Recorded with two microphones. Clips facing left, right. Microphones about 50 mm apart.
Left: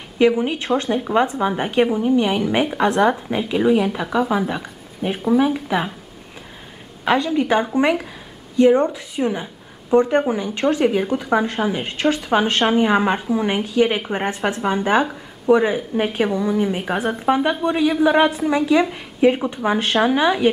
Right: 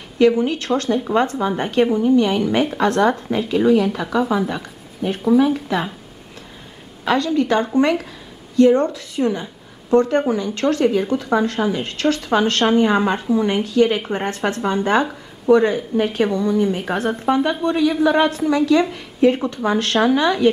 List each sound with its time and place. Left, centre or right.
0.4 s a woman's voice: centre
7.1 s a woman's voice: centre